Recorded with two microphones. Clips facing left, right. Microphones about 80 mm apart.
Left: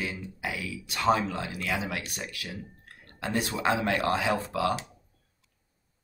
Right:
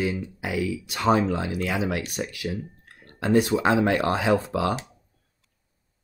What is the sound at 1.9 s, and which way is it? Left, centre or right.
Speech, right.